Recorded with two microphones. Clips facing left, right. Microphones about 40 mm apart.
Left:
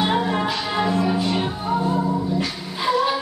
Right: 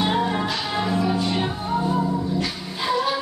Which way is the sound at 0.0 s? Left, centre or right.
Centre.